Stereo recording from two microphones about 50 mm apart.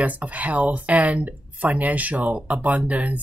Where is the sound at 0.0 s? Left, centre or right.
Right.